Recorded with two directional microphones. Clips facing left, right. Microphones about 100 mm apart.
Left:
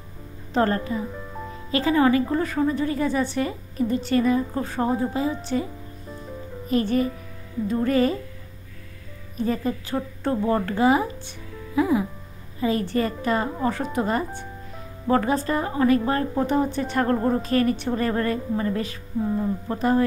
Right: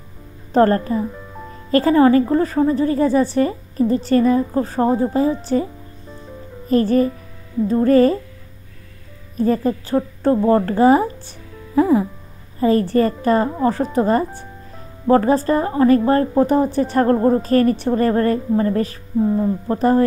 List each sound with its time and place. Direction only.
0.5 s a woman's voice: 40° right (ahead or behind)
1.1 s music: centre (ahead or behind)
1.7 s a woman's voice: 45° right (ahead or behind)
6.7 s a woman's voice: 40° right (ahead or behind)
9.4 s a woman's voice: 40° right (ahead or behind)